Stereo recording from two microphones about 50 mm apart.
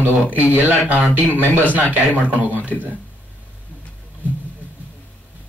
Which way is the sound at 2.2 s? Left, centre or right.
Right.